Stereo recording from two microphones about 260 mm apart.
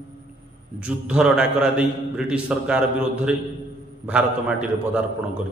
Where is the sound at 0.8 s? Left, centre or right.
Centre.